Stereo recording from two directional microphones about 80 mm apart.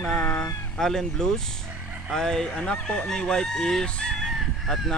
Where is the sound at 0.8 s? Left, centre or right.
Centre.